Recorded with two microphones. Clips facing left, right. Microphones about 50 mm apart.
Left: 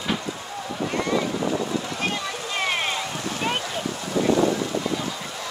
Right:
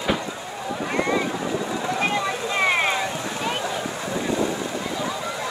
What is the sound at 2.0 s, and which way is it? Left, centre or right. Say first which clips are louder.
Vehicle: right 4 dB; right.